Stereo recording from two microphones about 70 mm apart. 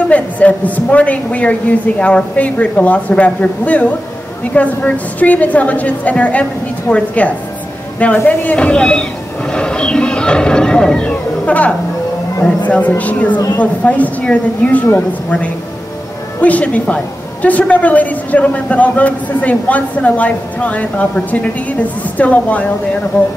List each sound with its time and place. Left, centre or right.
0.1 s a woman's voice: left
9.5 s a sound: centre
12.4 s a woman's voice: left